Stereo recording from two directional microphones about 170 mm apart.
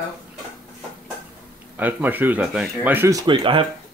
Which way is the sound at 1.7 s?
10° right (ahead or behind).